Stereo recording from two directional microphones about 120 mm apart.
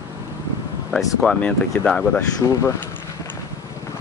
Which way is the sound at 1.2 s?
10° left (ahead or behind).